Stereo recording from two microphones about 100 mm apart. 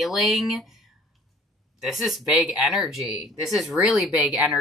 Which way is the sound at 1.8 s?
Centre (ahead or behind).